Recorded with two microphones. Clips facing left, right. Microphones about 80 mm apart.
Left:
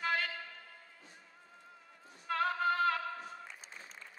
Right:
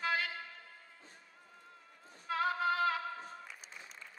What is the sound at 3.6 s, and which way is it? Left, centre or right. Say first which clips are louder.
Applause: even; left.